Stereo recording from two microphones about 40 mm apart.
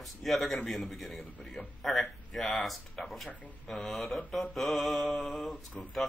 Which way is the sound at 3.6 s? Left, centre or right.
Centre.